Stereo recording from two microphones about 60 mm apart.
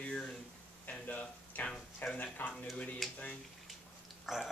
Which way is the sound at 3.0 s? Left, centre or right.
Centre.